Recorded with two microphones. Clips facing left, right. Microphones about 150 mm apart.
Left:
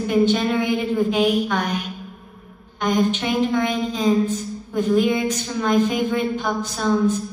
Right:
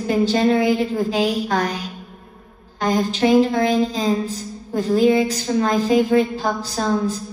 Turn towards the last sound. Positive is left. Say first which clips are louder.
# left 1 dB
turn(degrees=-35)  # may be behind; listen again after turning